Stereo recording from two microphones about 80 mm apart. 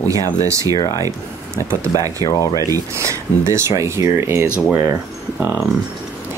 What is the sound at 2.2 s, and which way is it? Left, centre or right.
Speech, left.